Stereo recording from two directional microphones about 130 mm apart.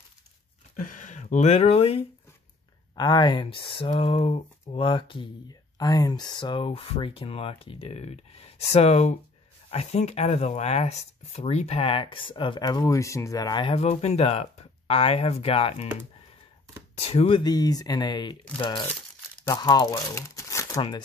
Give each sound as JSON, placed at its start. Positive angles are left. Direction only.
{"t": 0.7, "sound": "speech", "side_deg": 85}
{"t": 3.0, "sound": "speech", "side_deg": 35}
{"t": 4.8, "sound": "speech", "side_deg": 40}
{"t": 13.7, "sound": "speech", "side_deg": 55}
{"t": 17.0, "sound": "speech", "side_deg": 50}
{"t": 17.4, "sound": "speech", "side_deg": 30}